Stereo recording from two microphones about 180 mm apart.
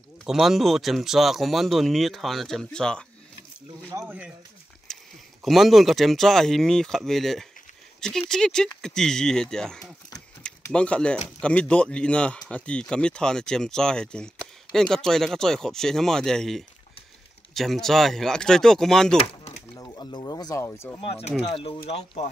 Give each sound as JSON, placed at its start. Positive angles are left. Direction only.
{"t": 0.2, "sound": "speech", "side_deg": 0}
{"t": 3.9, "sound": "speech", "side_deg": -10}
{"t": 4.9, "sound": "a sound", "side_deg": 5}
{"t": 5.4, "sound": "speech", "side_deg": 0}
{"t": 10.1, "sound": "a sound", "side_deg": 5}
{"t": 11.4, "sound": "speech", "side_deg": 5}
{"t": 19.1, "sound": "a sound", "side_deg": 35}
{"t": 19.8, "sound": "speech", "side_deg": 20}
{"t": 21.0, "sound": "speech", "side_deg": 35}